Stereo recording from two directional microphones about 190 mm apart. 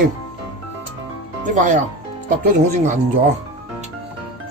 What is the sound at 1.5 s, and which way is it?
Speech, 40° right (ahead or behind).